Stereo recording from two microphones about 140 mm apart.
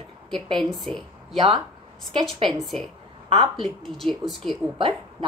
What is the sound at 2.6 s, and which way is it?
A woman's voice, centre (ahead or behind).